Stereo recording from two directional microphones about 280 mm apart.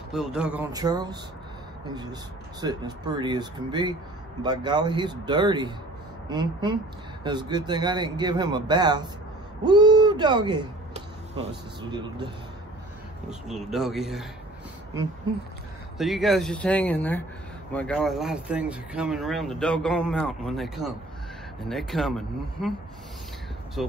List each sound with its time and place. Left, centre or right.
0.1 s speech: centre
13.3 s speech: centre
16.0 s speech: centre
23.8 s speech: centre